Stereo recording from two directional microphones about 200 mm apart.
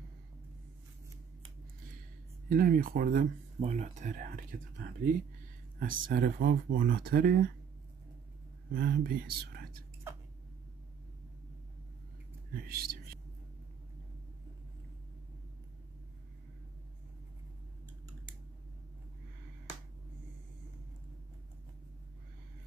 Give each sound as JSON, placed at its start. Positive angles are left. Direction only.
{"t": 2.5, "sound": "speech", "side_deg": -45}
{"t": 8.7, "sound": "speech", "side_deg": -50}
{"t": 12.5, "sound": "speech", "side_deg": -50}